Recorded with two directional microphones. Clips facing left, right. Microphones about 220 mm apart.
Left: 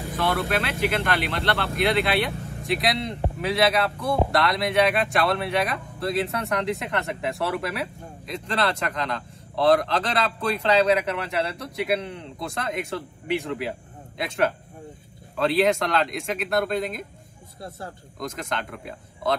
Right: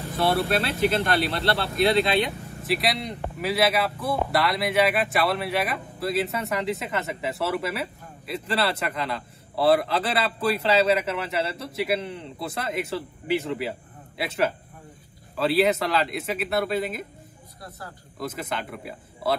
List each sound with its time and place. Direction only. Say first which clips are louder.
0.2 s speech: right 2 dB; 30° right (ahead or behind)
2.6 s a man's voice: left 1 dB; centre (ahead or behind)
17.6 s speech: left 5 dB; 25° left (ahead or behind)
18.2 s a man's voice: even; 5° right (ahead or behind)